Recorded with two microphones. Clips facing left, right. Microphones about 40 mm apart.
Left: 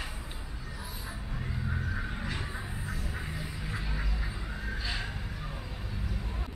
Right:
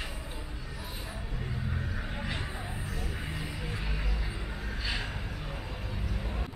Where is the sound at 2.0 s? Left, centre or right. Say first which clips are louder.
Even; centre.